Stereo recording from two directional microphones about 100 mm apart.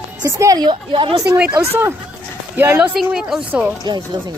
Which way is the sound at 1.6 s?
25° right (ahead or behind).